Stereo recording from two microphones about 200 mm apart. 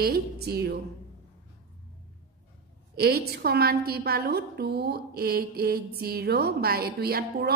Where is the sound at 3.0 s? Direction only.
50° right (ahead or behind).